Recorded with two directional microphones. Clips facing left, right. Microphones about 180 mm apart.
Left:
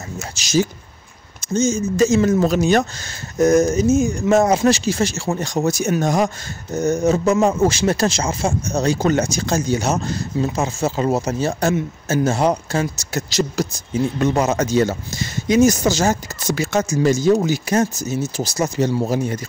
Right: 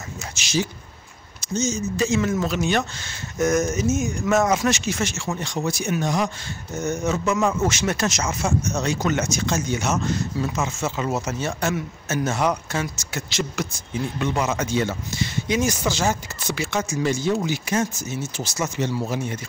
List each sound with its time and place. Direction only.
0.3 s speech: 40° left (ahead or behind)
1.4 s speech: 50° left (ahead or behind)
6.8 s speech: 35° left (ahead or behind)